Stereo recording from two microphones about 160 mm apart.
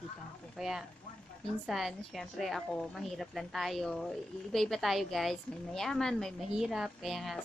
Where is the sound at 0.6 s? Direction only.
Centre (ahead or behind).